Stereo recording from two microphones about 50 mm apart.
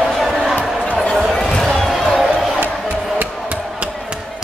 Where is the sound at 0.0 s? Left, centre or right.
Centre.